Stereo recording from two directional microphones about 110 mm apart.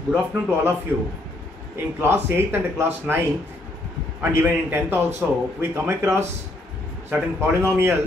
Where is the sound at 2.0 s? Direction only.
20° right (ahead or behind).